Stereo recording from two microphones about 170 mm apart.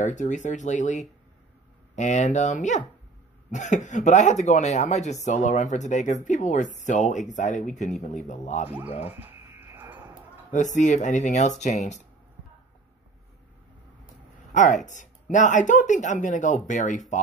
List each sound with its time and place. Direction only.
0.0 s speech: 45° left (ahead or behind)
9.0 s a sound: 10° right (ahead or behind)
10.5 s speech: 45° left (ahead or behind)
14.5 s speech: 45° left (ahead or behind)